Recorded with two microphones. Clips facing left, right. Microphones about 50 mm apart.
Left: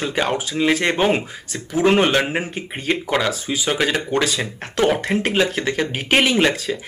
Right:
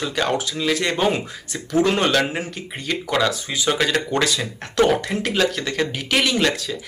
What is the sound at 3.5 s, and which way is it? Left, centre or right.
Speech, centre.